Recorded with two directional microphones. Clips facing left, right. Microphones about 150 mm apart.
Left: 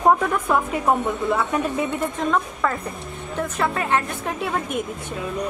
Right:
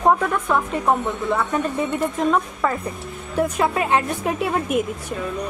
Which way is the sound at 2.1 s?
5° right (ahead or behind).